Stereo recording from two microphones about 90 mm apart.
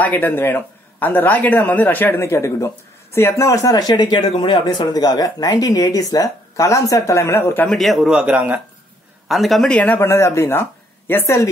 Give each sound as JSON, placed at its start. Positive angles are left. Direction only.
{"t": 0.0, "sound": "a man's voice", "side_deg": 20}
{"t": 2.2, "sound": "speech", "side_deg": 30}
{"t": 7.6, "sound": "a man's voice", "side_deg": 0}
{"t": 8.1, "sound": "speech", "side_deg": -15}
{"t": 9.3, "sound": "a man's voice", "side_deg": 0}
{"t": 9.7, "sound": "speech", "side_deg": 15}
{"t": 9.9, "sound": "speech", "side_deg": 30}